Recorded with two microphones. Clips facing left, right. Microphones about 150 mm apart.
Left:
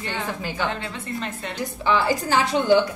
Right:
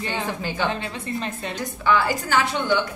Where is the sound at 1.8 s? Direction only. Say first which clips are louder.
Even; 25° left (ahead or behind).